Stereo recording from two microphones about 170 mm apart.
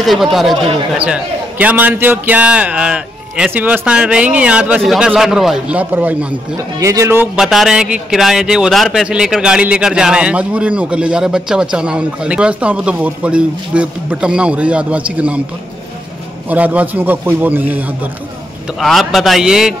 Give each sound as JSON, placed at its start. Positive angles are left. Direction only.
{"t": 0.0, "sound": "a man's voice", "side_deg": 0}
{"t": 7.3, "sound": "a man's voice", "side_deg": 0}
{"t": 16.4, "sound": "a man's voice", "side_deg": -10}
{"t": 18.8, "sound": "a man's voice", "side_deg": 0}